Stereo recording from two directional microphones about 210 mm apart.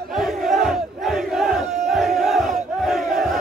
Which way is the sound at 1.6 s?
35° right (ahead or behind).